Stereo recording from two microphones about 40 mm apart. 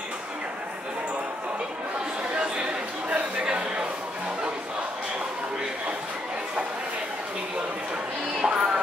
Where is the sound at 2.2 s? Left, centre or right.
Right.